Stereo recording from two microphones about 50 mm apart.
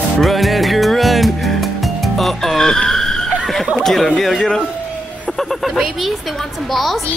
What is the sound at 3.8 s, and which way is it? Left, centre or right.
Speech, centre.